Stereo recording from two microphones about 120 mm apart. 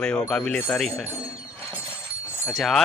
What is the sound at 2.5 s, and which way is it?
Speech, centre (ahead or behind).